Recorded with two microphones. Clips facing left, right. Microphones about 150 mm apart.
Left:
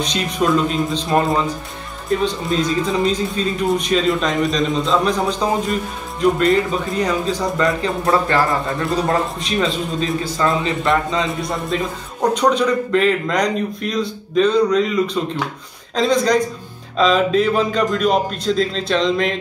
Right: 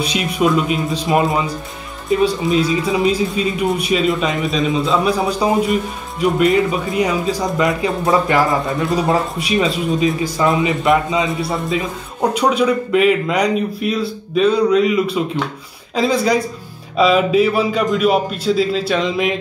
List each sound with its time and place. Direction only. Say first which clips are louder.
0.0 s a man's voice: right 2 dB; 10° right (ahead or behind)